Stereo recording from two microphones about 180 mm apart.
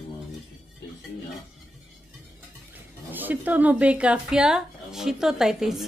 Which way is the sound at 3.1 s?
10° right (ahead or behind).